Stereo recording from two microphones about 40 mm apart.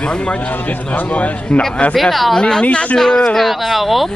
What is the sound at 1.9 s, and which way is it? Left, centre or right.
Speech, centre.